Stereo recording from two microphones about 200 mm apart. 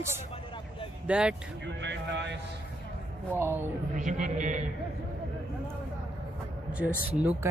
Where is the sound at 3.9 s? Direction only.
40° right (ahead or behind).